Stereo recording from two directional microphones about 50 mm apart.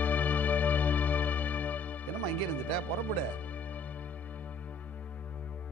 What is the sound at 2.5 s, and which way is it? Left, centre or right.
Speech, left.